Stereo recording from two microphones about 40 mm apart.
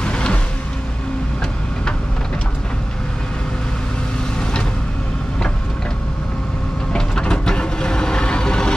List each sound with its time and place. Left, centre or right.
0.0 s music: left
6.9 s vehicle: centre